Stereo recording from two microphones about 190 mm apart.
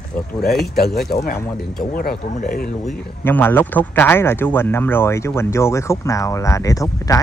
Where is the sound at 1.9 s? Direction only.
50° left (ahead or behind).